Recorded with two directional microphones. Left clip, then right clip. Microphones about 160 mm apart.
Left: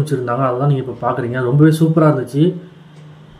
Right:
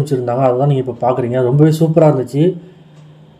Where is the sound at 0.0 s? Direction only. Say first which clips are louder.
Right 3 dB; 15° right (ahead or behind).